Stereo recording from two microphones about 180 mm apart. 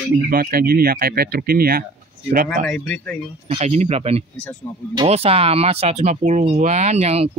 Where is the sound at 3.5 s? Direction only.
35° right (ahead or behind).